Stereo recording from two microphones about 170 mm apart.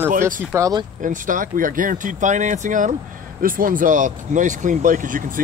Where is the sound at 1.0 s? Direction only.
50° right (ahead or behind).